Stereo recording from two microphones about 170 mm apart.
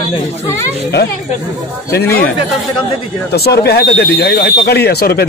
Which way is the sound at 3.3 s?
70° left (ahead or behind).